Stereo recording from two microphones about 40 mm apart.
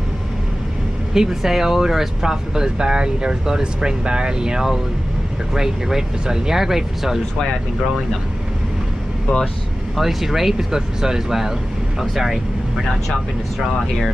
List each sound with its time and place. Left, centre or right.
1.1 s speech: centre
9.9 s speech: centre